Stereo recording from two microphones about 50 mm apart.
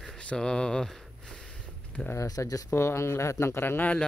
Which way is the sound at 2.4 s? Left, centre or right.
Left.